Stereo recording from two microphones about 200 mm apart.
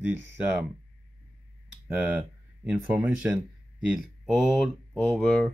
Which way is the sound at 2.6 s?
5° right (ahead or behind).